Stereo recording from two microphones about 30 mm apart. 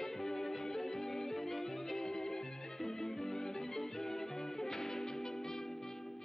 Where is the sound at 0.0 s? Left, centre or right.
Centre.